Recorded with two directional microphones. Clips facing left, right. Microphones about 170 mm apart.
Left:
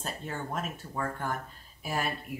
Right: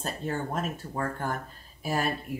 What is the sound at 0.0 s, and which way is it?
Speech, 40° right (ahead or behind).